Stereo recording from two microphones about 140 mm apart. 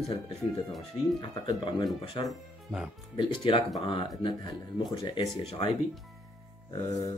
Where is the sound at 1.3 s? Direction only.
30° left (ahead or behind).